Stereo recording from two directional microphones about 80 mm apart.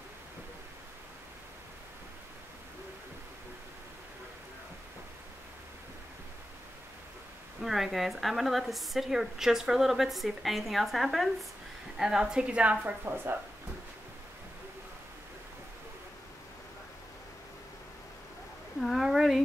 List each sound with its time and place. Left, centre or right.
7.6 s a woman's voice: centre
13.0 s speech: right
18.8 s a sound: centre